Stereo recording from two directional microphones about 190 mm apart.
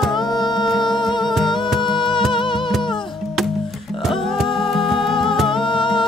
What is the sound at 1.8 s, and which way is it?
Music, 25° left (ahead or behind).